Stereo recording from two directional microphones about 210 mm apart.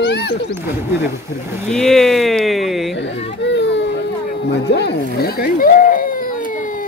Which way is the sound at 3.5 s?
55° left (ahead or behind).